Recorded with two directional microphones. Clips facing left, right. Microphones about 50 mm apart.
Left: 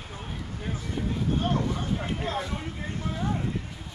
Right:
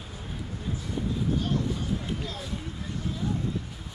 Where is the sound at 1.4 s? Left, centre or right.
Left.